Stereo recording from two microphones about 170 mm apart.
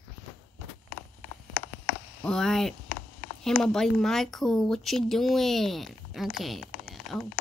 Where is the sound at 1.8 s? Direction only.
5° left (ahead or behind).